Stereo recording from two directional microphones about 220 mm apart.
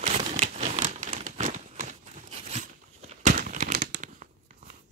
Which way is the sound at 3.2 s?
35° right (ahead or behind).